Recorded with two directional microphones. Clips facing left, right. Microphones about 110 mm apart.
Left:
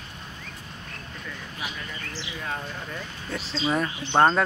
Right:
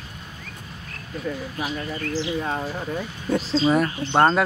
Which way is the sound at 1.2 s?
40° right (ahead or behind).